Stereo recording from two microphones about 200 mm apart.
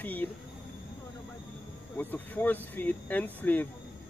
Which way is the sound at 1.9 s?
10° left (ahead or behind).